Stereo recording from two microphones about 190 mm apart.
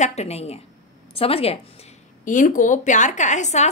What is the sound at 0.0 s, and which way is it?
A woman's voice, 35° left (ahead or behind).